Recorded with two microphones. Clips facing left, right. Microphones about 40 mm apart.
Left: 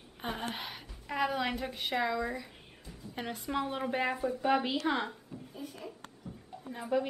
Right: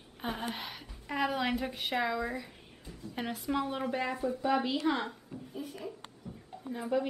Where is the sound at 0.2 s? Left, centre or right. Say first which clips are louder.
Right 1 dB; centre.